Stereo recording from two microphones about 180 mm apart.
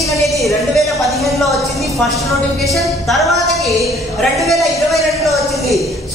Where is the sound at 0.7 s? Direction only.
Centre (ahead or behind).